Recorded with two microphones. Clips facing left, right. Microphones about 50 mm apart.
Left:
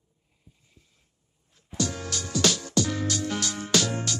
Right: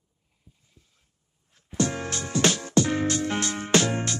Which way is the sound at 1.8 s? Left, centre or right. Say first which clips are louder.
Right 4 dB; right.